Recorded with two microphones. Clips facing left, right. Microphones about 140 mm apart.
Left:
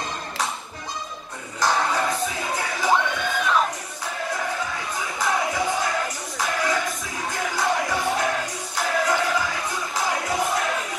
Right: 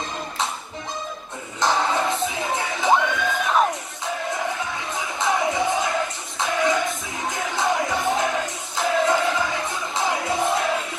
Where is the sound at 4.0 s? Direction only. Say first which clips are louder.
Right 2 dB; 25° right (ahead or behind).